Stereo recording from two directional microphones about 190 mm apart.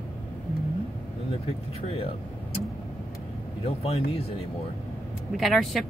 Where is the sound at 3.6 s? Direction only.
30° left (ahead or behind).